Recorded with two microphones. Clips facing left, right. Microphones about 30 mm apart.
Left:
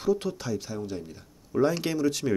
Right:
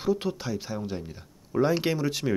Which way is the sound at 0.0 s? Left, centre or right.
Centre.